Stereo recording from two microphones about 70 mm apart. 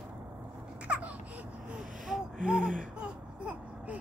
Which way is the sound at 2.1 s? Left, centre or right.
Centre.